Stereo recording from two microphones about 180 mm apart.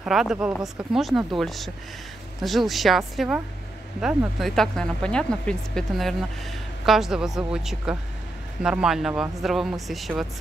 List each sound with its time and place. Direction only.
0.0 s speech: 5° right (ahead or behind)